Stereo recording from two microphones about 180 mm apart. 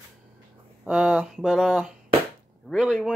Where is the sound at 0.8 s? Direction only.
5° right (ahead or behind).